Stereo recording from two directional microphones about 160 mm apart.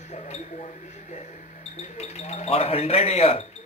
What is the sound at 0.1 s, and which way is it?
Speech, 40° left (ahead or behind).